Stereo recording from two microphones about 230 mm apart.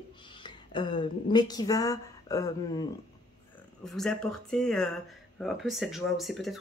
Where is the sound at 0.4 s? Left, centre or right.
Centre.